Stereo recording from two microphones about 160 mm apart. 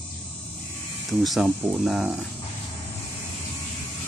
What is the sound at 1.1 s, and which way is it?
Speech, centre (ahead or behind).